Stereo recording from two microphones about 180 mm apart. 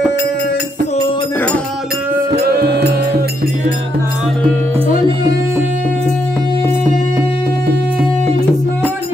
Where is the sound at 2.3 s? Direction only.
65° right (ahead or behind).